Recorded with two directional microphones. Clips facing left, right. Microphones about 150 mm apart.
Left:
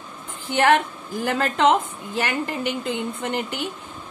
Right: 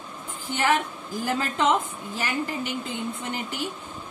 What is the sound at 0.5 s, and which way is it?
A woman's voice, 65° left (ahead or behind).